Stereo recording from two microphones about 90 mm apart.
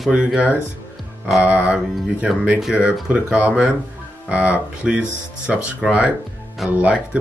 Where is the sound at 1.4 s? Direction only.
15° right (ahead or behind).